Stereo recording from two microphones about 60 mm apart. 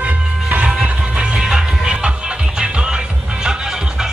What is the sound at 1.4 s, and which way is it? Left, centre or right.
Music, centre.